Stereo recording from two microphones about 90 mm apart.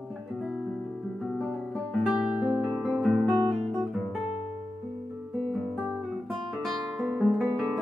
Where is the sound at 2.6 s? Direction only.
Centre (ahead or behind).